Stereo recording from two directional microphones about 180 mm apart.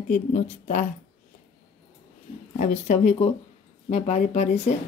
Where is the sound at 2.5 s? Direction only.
40° left (ahead or behind).